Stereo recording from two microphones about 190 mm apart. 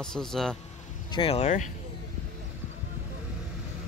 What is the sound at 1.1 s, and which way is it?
Speech, 30° left (ahead or behind).